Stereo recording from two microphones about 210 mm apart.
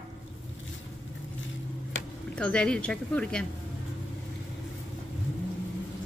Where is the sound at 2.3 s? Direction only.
5° left (ahead or behind).